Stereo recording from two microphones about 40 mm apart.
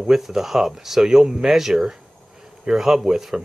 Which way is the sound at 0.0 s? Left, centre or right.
Centre.